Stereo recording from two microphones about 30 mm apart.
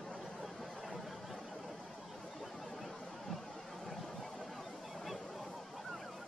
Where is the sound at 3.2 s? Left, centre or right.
Centre.